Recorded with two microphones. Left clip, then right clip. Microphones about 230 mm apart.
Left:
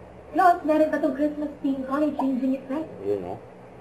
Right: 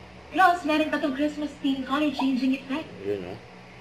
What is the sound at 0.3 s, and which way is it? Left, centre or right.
Speech, centre.